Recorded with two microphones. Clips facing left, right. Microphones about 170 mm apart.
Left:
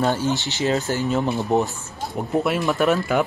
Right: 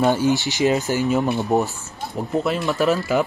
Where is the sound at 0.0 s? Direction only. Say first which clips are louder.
Right 3 dB; 15° right (ahead or behind).